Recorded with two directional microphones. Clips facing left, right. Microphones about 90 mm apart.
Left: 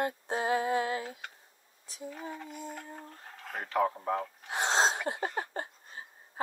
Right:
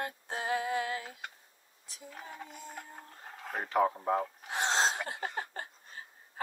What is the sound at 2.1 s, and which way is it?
Speech, centre (ahead or behind).